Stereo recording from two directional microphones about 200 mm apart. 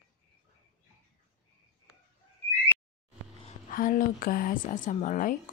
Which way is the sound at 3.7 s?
40° left (ahead or behind).